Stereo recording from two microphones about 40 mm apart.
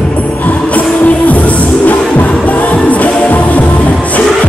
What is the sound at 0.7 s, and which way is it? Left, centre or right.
Music, left.